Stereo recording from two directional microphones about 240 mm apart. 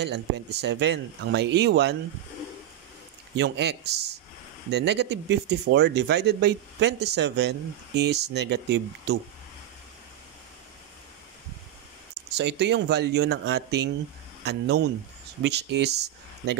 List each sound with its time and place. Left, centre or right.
0.0 s speech: right
3.3 s speech: right
12.4 s speech: right